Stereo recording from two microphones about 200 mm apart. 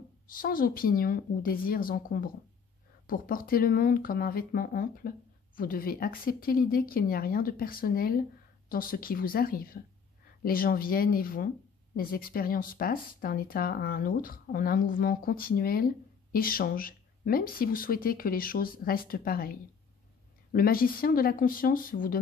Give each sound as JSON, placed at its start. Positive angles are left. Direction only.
{"t": 0.3, "sound": "speech", "side_deg": 45}
{"t": 20.5, "sound": "speech", "side_deg": 45}